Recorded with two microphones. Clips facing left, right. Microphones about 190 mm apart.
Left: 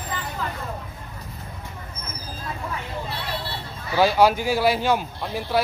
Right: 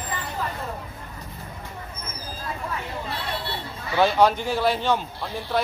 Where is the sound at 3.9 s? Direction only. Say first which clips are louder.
Left 1 dB; 5° left (ahead or behind).